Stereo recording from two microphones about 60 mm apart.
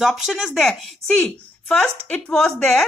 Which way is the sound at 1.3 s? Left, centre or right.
Left.